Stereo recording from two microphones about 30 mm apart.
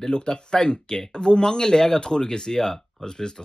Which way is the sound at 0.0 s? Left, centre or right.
Left.